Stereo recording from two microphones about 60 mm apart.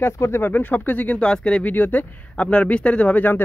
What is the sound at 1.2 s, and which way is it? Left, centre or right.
Speech, centre.